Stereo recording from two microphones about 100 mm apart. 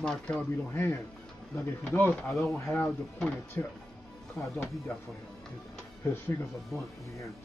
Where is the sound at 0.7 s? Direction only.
25° left (ahead or behind).